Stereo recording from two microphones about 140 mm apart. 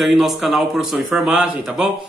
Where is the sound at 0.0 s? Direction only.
Centre (ahead or behind).